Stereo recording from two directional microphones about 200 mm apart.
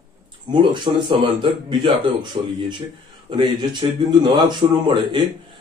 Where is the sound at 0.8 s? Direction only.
25° right (ahead or behind).